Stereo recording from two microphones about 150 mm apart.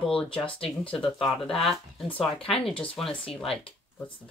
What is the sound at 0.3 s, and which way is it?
Speech, 35° left (ahead or behind).